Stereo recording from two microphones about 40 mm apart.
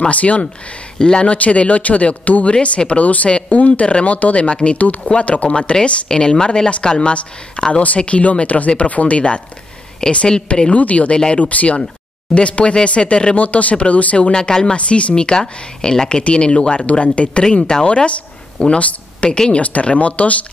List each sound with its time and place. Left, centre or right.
0.1 s speech: left
0.9 s speech: centre
1.2 s speech: left
10.7 s speech: left
13.4 s speech: left
14.8 s speech: left
19.3 s speech: centre
19.6 s speech: left